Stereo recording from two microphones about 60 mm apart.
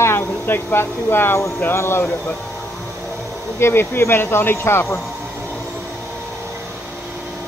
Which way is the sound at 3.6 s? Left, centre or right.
Left.